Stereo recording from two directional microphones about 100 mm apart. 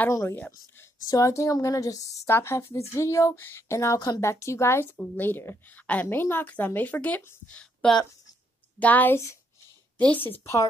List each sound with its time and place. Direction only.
0.1 s a woman's voice: 30° left (ahead or behind)